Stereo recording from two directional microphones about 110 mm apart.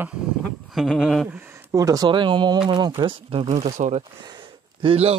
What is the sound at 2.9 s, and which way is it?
Speech, 55° right (ahead or behind).